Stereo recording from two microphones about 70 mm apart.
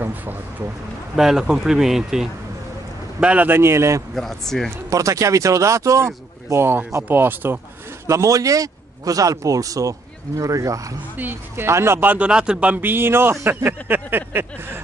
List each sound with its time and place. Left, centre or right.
0.0 s a sound: right
1.1 s speech: centre
3.4 s speech: right
4.1 s speech: centre
4.8 s speech: right
8.1 s speech: right
11.1 s speech: right
12.1 s speech: centre